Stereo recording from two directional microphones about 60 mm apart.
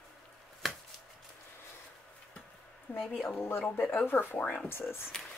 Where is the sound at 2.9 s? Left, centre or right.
Left.